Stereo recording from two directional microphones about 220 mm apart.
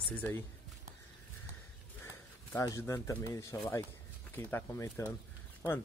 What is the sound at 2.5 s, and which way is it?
Speech, 15° left (ahead or behind).